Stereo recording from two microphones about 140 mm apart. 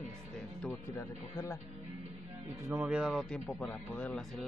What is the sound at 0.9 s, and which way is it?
Speech, 20° left (ahead or behind).